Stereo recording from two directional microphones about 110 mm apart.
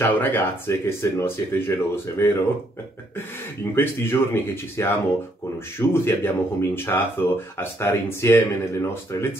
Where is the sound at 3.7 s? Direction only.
20° left (ahead or behind).